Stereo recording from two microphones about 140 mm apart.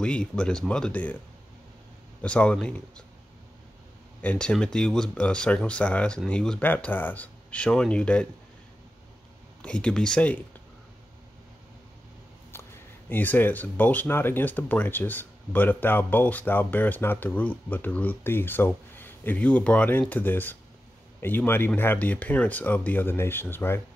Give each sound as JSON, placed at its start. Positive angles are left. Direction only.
{"t": 0.0, "sound": "speech", "side_deg": 5}
{"t": 2.2, "sound": "speech", "side_deg": 5}
{"t": 4.2, "sound": "speech", "side_deg": 10}
{"t": 9.6, "sound": "speech", "side_deg": 5}
{"t": 12.5, "sound": "a sound", "side_deg": 20}
{"t": 13.1, "sound": "speech", "side_deg": 15}